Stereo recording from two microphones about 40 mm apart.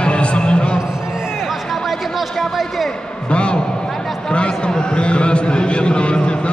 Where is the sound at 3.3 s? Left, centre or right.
Left.